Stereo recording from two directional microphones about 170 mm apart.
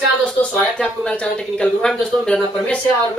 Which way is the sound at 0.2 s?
5° left (ahead or behind).